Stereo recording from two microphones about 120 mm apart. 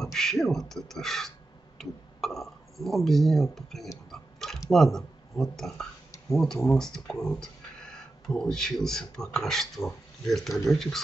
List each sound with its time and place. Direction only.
0.0 s speech: 5° left (ahead or behind)
4.1 s a sound: 5° left (ahead or behind)
4.6 s speech: centre (ahead or behind)